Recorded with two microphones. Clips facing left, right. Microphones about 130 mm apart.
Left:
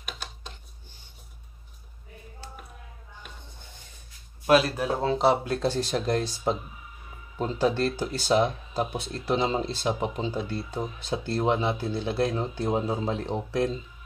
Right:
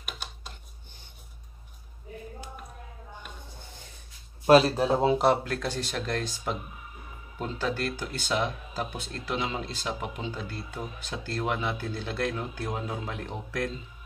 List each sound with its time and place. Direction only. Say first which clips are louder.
0.0 s a sound: left 1 dB; 5° right (ahead or behind)
4.5 s speech: right 3 dB; 35° right (ahead or behind)
5.4 s speech: left 5 dB; 25° left (ahead or behind)